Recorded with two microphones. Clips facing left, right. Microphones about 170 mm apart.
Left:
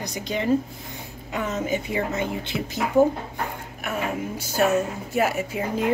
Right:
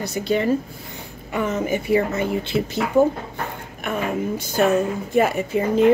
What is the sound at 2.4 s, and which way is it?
Speech, 15° left (ahead or behind).